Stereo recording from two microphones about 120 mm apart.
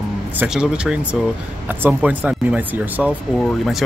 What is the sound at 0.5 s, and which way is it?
Speech, 10° right (ahead or behind).